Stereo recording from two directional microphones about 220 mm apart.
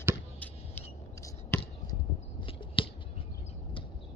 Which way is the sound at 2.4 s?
25° left (ahead or behind).